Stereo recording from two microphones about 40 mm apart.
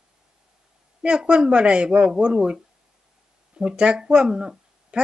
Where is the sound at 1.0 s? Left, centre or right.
Right.